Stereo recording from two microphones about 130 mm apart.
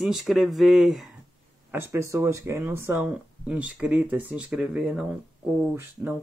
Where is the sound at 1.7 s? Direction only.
20° right (ahead or behind).